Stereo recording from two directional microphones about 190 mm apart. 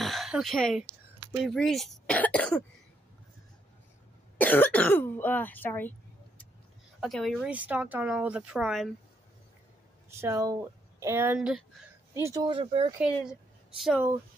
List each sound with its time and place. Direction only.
0.0 s a sound: centre (ahead or behind)
1.2 s keys jangling: 10° right (ahead or behind)
1.5 s speech: centre (ahead or behind)
4.4 s speech: 10° left (ahead or behind)
10.2 s speech: 15° right (ahead or behind)
12.1 s speech: 15° right (ahead or behind)
13.7 s speech: centre (ahead or behind)